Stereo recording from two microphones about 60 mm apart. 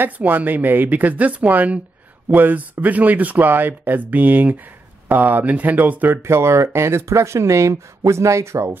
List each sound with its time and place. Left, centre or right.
0.0 s speech: right
6.2 s speech: right